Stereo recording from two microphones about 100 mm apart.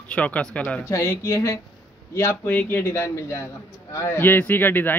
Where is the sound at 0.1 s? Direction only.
10° left (ahead or behind).